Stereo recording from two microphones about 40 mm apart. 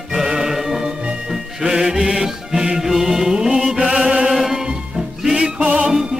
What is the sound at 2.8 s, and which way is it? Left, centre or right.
Music, centre.